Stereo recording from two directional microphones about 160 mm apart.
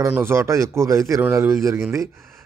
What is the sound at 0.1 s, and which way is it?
A man's voice, 15° right (ahead or behind).